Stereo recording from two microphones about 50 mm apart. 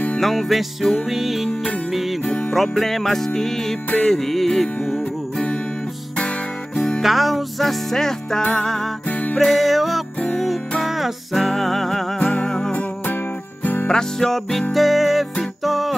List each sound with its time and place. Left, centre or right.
0.2 s music: centre
7.0 s music: centre
12.2 s music: left
13.8 s music: centre